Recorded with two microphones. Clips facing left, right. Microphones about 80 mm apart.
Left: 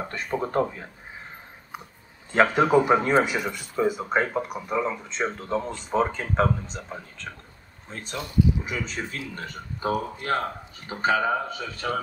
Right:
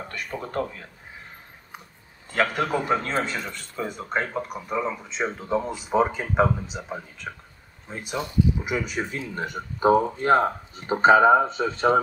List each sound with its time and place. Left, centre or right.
0.1 s speech: left
2.3 s speech: left; by 12.0 s right